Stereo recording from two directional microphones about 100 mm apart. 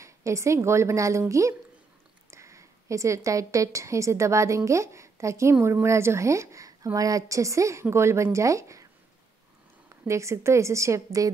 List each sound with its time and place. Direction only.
0.0 s a woman's voice: 30° right (ahead or behind)
2.3 s a woman's voice: 30° right (ahead or behind)
9.8 s a woman's voice: 30° right (ahead or behind)